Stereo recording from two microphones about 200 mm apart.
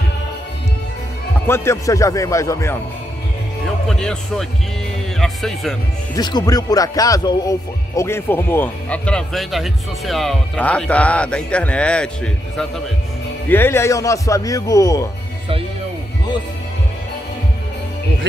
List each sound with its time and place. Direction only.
1.5 s speech: 15° left (ahead or behind)
3.6 s speech: 5° left (ahead or behind)
6.1 s speech: 20° left (ahead or behind)